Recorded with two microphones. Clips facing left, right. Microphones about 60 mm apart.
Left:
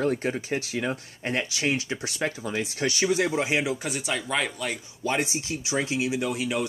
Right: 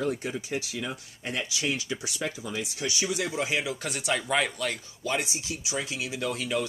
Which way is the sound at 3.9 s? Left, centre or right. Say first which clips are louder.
Even; centre.